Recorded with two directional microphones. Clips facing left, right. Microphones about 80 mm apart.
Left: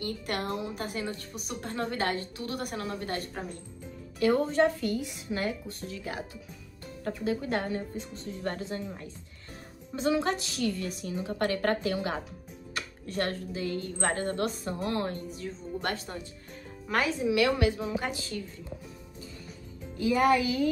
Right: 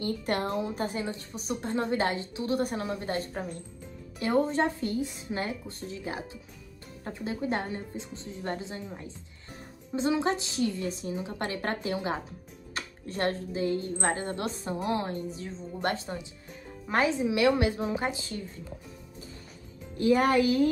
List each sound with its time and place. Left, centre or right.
0.0 s a woman's voice: right
20.0 s speech: right